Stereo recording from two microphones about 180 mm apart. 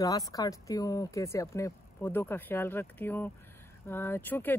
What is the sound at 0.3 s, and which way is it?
Speech, 20° left (ahead or behind).